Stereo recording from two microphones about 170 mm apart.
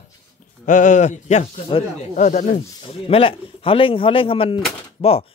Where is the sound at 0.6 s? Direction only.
50° left (ahead or behind).